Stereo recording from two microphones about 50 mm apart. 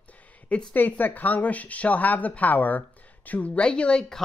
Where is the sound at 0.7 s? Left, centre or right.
Left.